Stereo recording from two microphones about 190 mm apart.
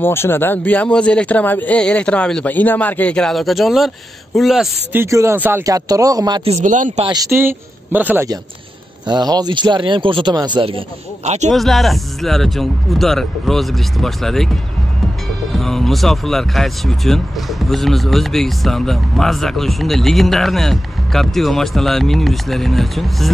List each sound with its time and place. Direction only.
0.0 s a man's voice: 10° left (ahead or behind)
5.0 s speech: 15° right (ahead or behind)
6.5 s speech: 40° right (ahead or behind)
7.1 s speech: 15° right (ahead or behind)
9.0 s speech: 20° right (ahead or behind)
11.2 s speech: 35° right (ahead or behind)
11.5 s speech: centre (ahead or behind)